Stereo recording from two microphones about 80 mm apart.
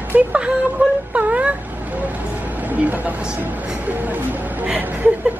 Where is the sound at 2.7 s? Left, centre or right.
Centre.